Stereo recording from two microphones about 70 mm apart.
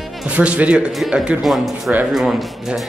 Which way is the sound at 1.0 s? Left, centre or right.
Centre.